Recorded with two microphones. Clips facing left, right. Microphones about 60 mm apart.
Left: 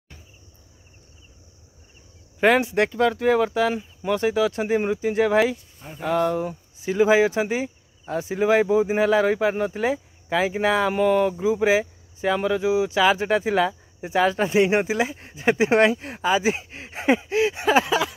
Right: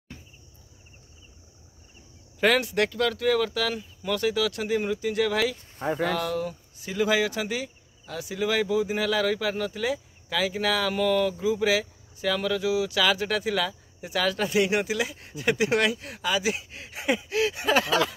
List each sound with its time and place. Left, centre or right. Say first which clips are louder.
2.4 s speech: left 4 dB; left
5.8 s speech: right 5 dB; right
6.1 s speech: left 6 dB; centre